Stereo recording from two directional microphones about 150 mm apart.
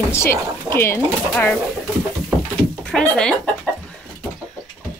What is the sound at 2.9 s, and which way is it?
Speech, 5° left (ahead or behind).